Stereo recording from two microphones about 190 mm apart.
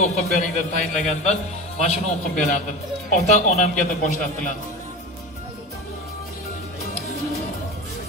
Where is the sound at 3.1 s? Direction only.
35° left (ahead or behind).